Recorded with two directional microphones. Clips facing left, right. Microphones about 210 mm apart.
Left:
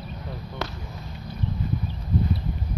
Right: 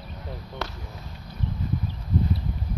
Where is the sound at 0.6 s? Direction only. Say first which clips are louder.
Left 2 dB; centre (ahead or behind).